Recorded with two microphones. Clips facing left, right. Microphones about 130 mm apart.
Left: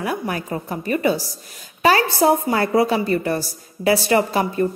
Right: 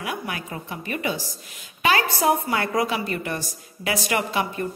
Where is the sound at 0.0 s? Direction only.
40° left (ahead or behind).